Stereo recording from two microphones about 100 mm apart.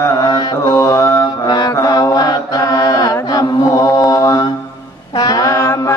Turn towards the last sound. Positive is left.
turn(degrees=30)  # may be behind; listen again after turning